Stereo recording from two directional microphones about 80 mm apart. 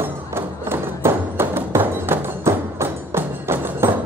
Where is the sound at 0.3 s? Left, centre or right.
Right.